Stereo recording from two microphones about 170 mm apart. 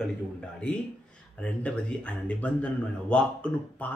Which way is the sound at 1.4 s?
5° left (ahead or behind).